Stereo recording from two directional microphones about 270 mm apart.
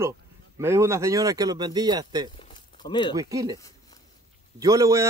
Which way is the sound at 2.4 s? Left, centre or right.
Centre.